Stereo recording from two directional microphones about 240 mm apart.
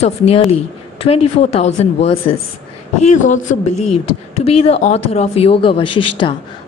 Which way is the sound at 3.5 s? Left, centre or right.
Left.